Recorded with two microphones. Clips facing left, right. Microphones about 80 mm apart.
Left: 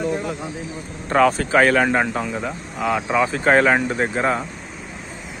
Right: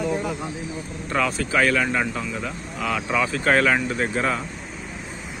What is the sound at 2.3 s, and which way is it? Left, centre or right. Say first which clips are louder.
Speech: left 3 dB; left.